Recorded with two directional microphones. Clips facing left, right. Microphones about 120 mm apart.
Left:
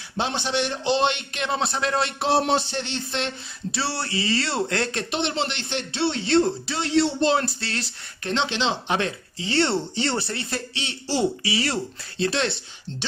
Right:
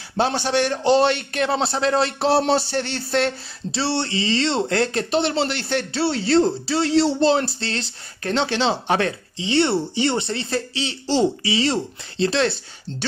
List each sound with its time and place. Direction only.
0.2 s speech: 45° right (ahead or behind)
3.7 s speech: 30° right (ahead or behind)
9.4 s speech: 15° right (ahead or behind); by 12.5 s 35° right (ahead or behind)